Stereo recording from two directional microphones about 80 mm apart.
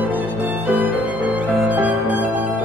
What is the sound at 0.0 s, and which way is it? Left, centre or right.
Violin, right.